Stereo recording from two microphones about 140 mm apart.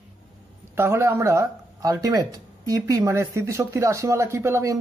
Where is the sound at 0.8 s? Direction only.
20° right (ahead or behind).